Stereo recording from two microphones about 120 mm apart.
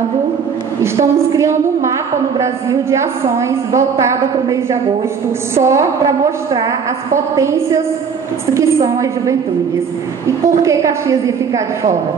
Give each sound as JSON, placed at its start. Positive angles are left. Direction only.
{"t": 0.9, "sound": "a woman's voice", "side_deg": -25}